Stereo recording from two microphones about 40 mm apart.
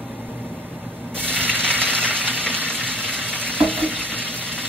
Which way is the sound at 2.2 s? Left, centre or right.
Right.